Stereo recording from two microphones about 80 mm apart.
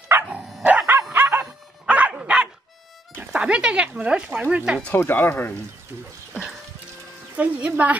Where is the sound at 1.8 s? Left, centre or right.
Centre.